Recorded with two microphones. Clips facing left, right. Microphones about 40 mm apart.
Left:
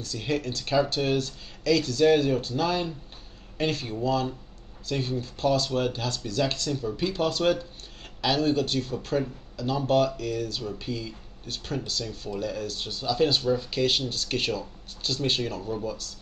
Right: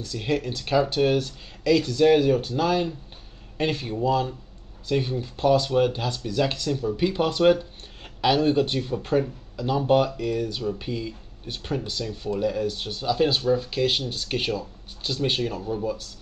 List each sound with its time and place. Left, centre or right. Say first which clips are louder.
0.0 s speech: right 3 dB; centre